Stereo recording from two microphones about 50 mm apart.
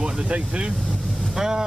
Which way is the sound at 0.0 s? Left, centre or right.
Centre.